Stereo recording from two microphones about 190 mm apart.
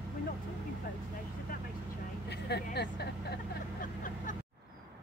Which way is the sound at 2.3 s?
60° left (ahead or behind).